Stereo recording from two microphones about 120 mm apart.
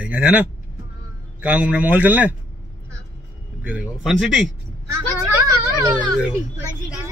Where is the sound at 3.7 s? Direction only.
10° right (ahead or behind).